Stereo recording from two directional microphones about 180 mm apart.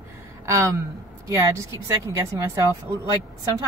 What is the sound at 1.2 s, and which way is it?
Speech, 20° right (ahead or behind).